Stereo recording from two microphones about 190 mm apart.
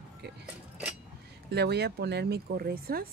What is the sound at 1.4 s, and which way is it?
Speech, 60° right (ahead or behind).